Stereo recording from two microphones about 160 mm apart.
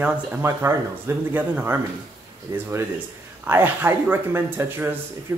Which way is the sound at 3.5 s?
10° right (ahead or behind).